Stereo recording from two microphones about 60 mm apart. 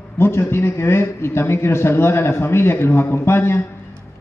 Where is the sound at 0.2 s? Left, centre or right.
Left.